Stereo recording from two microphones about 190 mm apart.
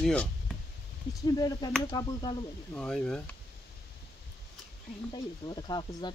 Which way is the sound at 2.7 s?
5° left (ahead or behind).